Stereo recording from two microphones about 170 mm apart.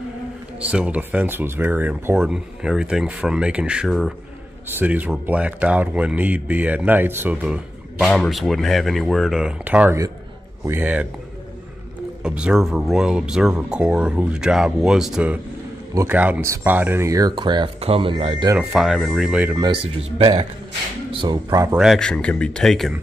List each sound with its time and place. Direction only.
0.6 s speech: 5° right (ahead or behind)
12.2 s speech: 5° right (ahead or behind)
15.9 s speech: 15° right (ahead or behind); by 18.5 s 30° right (ahead or behind)
18.6 s speech: 5° right (ahead or behind)
19.5 s speech: 25° right (ahead or behind)
21.7 s speech: centre (ahead or behind)